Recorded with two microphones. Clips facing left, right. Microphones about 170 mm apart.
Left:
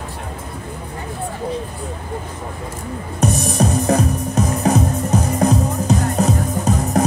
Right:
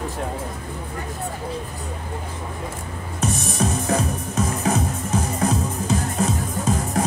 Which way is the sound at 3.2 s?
40° left (ahead or behind).